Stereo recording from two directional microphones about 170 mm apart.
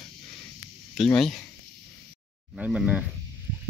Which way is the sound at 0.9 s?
Centre (ahead or behind).